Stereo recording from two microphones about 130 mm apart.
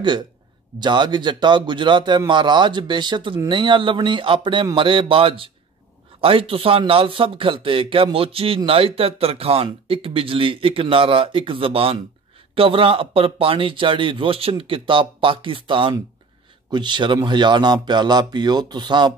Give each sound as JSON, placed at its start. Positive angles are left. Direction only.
{"t": 0.7, "sound": "a man's voice", "side_deg": -35}